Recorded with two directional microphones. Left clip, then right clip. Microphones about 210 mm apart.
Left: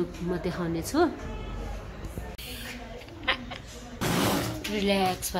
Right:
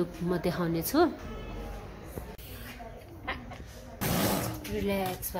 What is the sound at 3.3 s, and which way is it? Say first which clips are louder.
Cat: left 9 dB; 5° left (ahead or behind).